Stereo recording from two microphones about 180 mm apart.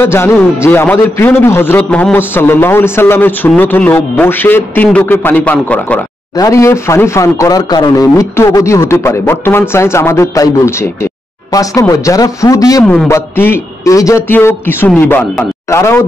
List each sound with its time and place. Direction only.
0.0 s a man's voice: 15° left (ahead or behind)
6.3 s a man's voice: 20° left (ahead or behind)
12.8 s a man's voice: 10° left (ahead or behind)